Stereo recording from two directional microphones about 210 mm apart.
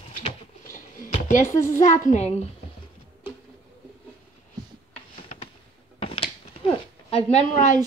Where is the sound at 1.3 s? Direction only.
35° left (ahead or behind).